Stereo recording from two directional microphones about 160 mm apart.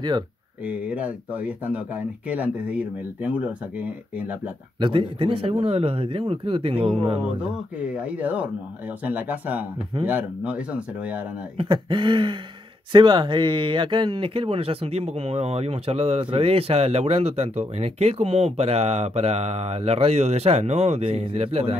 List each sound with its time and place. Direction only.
0.7 s speech: 10° right (ahead or behind)
4.7 s speech: 30° right (ahead or behind)
7.8 s speech: 10° right (ahead or behind)
11.5 s a sound: 30° right (ahead or behind)
12.9 s speech: 30° right (ahead or behind)